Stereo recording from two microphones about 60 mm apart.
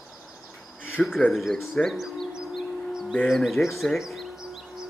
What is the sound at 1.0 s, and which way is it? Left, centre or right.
Speech, centre.